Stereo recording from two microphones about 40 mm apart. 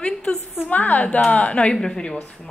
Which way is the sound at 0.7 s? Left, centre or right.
Left.